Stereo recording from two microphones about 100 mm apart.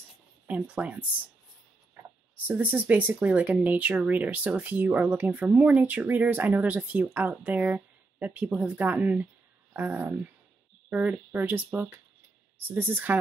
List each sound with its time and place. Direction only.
0.5 s speech: 15° right (ahead or behind)
2.4 s speech: 15° right (ahead or behind)